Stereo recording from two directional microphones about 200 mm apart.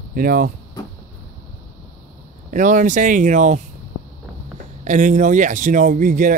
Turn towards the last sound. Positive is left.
turn(degrees=-40)  # may be behind; listen again after turning